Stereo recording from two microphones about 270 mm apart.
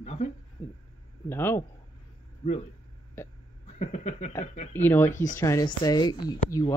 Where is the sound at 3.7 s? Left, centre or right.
Left.